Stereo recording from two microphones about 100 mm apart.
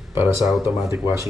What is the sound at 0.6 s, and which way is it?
Speech, 25° right (ahead or behind).